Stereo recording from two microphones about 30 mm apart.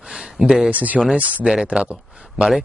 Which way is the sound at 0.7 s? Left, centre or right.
Right.